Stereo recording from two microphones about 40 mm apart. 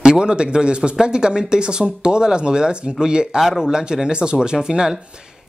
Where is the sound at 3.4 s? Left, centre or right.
Centre.